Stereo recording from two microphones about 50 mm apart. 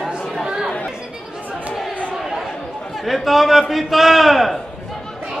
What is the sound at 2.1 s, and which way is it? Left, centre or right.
Chatter, centre.